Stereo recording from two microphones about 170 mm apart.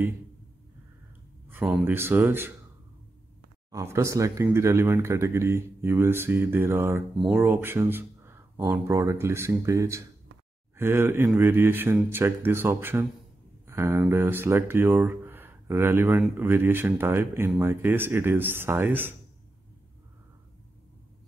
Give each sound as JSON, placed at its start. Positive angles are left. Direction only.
{"t": 1.5, "sound": "speech", "side_deg": -10}
{"t": 3.7, "sound": "speech", "side_deg": -15}